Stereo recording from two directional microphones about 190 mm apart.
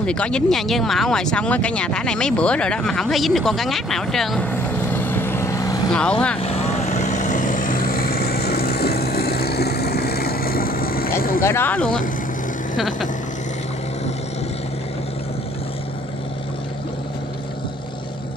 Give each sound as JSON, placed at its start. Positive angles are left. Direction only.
{"t": 0.0, "sound": "speech", "side_deg": 5}
{"t": 5.9, "sound": "speech", "side_deg": 5}
{"t": 6.4, "sound": "vehicle", "side_deg": 35}
{"t": 11.4, "sound": "speech", "side_deg": 10}